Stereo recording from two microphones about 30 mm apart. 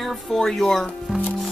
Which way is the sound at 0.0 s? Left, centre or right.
Centre.